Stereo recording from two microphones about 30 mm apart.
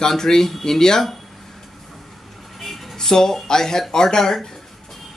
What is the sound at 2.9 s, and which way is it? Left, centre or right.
Speech, centre.